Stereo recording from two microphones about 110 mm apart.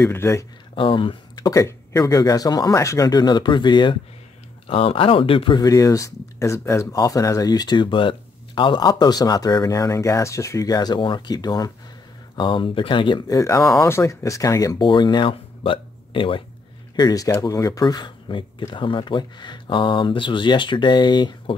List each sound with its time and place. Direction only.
0.0 s speech: 20° left (ahead or behind)
0.7 s speech: 50° left (ahead or behind)
1.3 s speech: 35° left (ahead or behind)
3.1 s speech: 40° left (ahead or behind)
4.6 s speech: 55° left (ahead or behind)
5.6 s speech: 30° left (ahead or behind)
12.4 s speech: 50° left (ahead or behind)
13.3 s speech: 30° left (ahead or behind)
14.9 s speech: 45° left (ahead or behind)
16.9 s speech: 35° left (ahead or behind)